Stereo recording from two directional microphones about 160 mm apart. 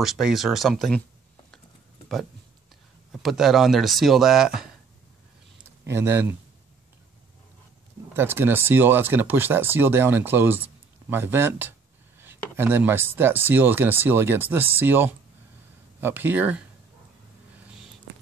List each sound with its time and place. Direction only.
0.0 s speech: centre (ahead or behind)
3.1 s speech: centre (ahead or behind)
5.9 s speech: 15° right (ahead or behind)
8.2 s speech: 15° right (ahead or behind)